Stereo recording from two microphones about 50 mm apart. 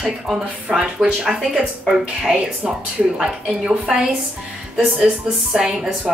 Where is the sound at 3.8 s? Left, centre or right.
Centre.